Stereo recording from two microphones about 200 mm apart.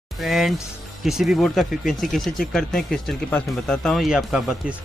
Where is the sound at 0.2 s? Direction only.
Centre (ahead or behind).